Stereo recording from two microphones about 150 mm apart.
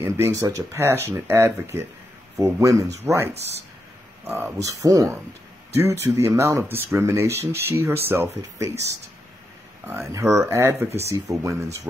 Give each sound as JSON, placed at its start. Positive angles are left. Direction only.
{"t": 0.0, "sound": "speech", "side_deg": -20}
{"t": 4.3, "sound": "speech", "side_deg": -15}
{"t": 9.8, "sound": "speech", "side_deg": -15}